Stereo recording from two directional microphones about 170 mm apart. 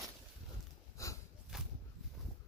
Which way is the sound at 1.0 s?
20° left (ahead or behind).